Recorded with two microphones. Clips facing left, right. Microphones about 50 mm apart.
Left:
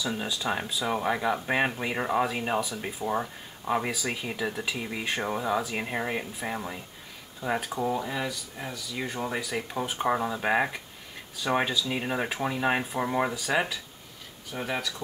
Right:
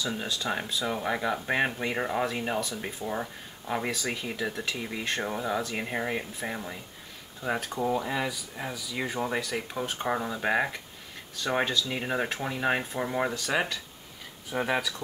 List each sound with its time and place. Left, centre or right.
0.0 s speech: centre
14.5 s speech: centre